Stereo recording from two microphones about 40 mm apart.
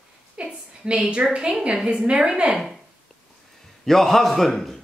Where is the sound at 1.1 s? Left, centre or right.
Right.